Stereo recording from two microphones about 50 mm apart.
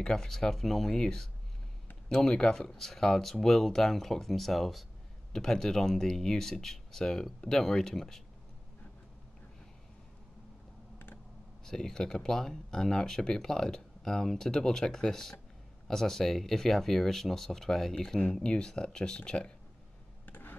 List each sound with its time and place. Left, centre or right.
0.0 s speech: centre
11.6 s speech: centre
20.2 s a sound: left